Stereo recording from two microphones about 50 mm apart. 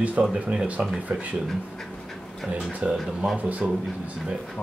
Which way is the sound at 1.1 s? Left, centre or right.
Right.